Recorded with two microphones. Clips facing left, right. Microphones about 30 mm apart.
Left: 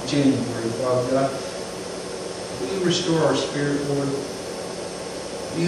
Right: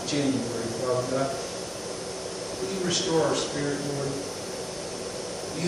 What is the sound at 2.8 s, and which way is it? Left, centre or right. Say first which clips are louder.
Speech: left 5 dB; centre.